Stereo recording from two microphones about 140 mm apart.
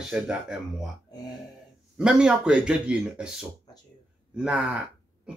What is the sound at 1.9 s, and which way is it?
Speech, 5° right (ahead or behind).